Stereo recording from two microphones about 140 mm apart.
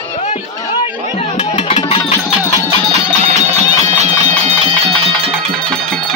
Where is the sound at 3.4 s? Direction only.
50° right (ahead or behind).